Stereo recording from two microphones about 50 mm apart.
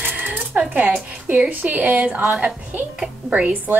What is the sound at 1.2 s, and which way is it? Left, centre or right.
A woman's voice, right.